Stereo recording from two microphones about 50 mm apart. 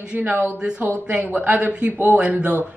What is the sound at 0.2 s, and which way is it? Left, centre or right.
Speech, right.